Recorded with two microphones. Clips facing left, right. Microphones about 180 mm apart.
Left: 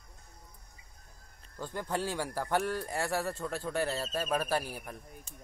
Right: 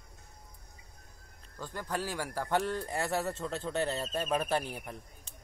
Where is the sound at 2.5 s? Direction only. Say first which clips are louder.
Right 1 dB; 20° right (ahead or behind).